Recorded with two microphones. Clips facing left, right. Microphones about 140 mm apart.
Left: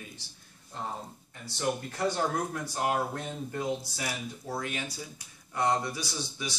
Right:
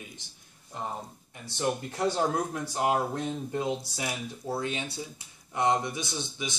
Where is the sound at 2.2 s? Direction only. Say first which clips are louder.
Right 2 dB; 20° right (ahead or behind).